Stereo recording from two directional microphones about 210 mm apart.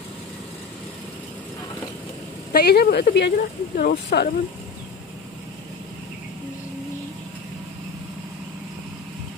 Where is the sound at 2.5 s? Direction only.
50° left (ahead or behind).